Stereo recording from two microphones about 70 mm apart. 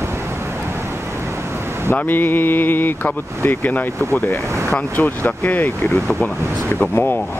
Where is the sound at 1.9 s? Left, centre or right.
Left.